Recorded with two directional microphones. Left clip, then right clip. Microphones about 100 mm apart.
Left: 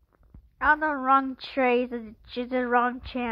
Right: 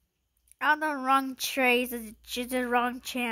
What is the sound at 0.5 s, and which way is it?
A woman's voice, 35° right (ahead or behind).